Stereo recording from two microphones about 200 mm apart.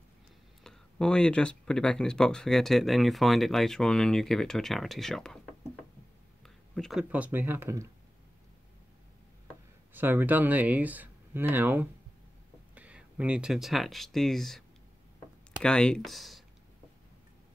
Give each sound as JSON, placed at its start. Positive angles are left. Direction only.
{"t": 0.7, "sound": "speech", "side_deg": 5}
{"t": 6.4, "sound": "speech", "side_deg": 0}
{"t": 9.9, "sound": "speech", "side_deg": -10}
{"t": 15.6, "sound": "speech", "side_deg": 5}